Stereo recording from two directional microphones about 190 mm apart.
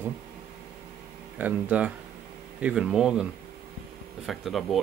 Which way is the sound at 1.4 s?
5° right (ahead or behind).